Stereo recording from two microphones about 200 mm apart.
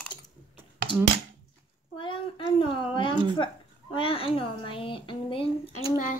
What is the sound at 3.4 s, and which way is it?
A woman's voice, 25° left (ahead or behind).